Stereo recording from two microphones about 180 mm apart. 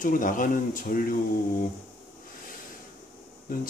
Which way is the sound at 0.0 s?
50° left (ahead or behind).